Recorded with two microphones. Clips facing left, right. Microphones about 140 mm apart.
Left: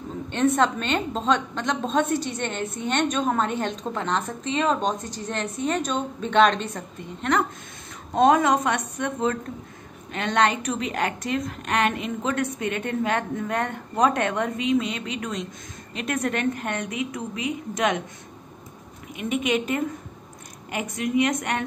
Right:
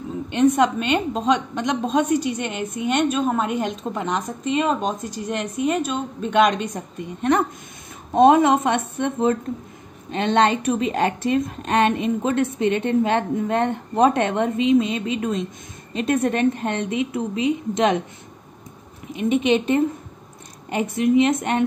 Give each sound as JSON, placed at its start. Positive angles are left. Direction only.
{"t": 0.3, "sound": "a woman's voice", "side_deg": -15}
{"t": 19.1, "sound": "a woman's voice", "side_deg": -25}